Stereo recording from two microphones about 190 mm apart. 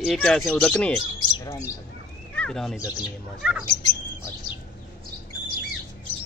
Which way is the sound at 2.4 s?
Centre (ahead or behind).